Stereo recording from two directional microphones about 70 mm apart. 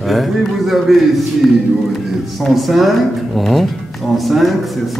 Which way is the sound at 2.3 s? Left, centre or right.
Centre.